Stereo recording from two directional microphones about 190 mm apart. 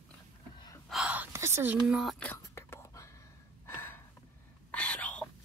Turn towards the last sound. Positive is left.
turn(degrees=5)  # may be behind; listen again after turning